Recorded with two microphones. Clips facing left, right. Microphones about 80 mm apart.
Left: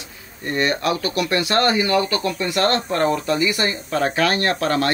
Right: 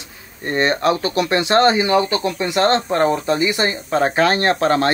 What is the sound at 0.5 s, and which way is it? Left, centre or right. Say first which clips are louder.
Speech: right 3 dB; right.